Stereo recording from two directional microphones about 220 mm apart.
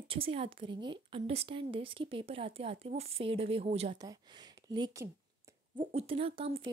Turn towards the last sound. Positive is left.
turn(degrees=-25)  # may be behind; listen again after turning